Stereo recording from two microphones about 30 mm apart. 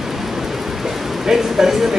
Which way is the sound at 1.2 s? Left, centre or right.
Centre.